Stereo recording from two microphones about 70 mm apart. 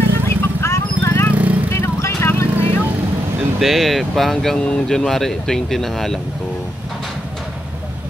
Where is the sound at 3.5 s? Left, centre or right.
Centre.